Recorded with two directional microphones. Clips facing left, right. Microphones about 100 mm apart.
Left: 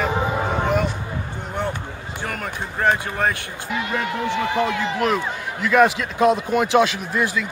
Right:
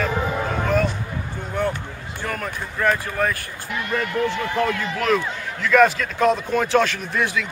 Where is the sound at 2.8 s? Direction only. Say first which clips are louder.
Left 1 dB; 35° left (ahead or behind).